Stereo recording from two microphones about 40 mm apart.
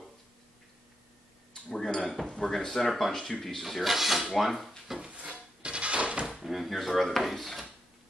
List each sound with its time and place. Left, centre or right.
1.8 s dishes: centre
2.5 s a sound: centre
2.9 s speech: centre
4.9 s dishes: right
5.6 s a sound: right
6.2 s speech: centre